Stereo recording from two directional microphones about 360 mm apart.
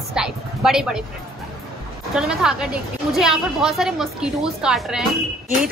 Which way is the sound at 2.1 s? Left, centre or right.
Centre.